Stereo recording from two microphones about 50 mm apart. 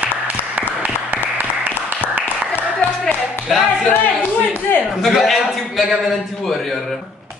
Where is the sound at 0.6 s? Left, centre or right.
Right.